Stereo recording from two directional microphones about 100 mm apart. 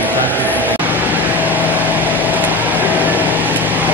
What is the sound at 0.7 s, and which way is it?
Vehicle, 20° right (ahead or behind).